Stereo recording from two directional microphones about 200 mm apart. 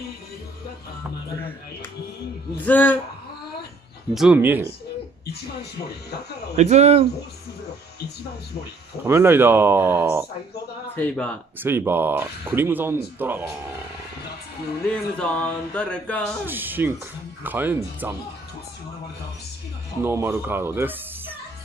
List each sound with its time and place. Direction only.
2.5 s speech: 10° left (ahead or behind)
4.1 s speech: 5° right (ahead or behind)
5.2 s a sound: 55° left (ahead or behind)
6.5 s speech: 35° right (ahead or behind)
9.0 s speech: 10° right (ahead or behind)
11.0 s speech: 5° left (ahead or behind)
11.6 s speech: 10° right (ahead or behind)
14.9 s speech: 5° left (ahead or behind)
16.4 s speech: 10° right (ahead or behind)
20.0 s speech: 10° right (ahead or behind)